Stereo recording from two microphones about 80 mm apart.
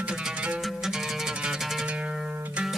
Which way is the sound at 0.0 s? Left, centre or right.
Centre.